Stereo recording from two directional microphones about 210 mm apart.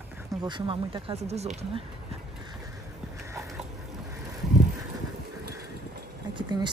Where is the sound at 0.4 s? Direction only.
20° right (ahead or behind).